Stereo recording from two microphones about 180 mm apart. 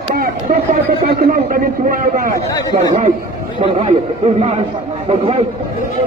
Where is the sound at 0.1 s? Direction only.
50° right (ahead or behind).